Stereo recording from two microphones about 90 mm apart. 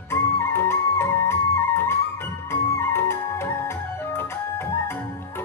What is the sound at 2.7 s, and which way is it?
Music, 30° left (ahead or behind).